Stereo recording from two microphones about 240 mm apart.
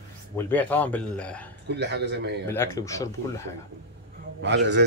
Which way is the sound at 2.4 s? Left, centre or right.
Centre.